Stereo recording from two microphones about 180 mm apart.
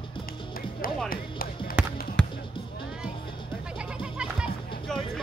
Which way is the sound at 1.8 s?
5° right (ahead or behind).